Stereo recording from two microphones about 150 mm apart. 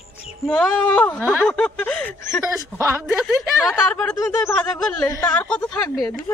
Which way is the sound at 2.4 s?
20° right (ahead or behind).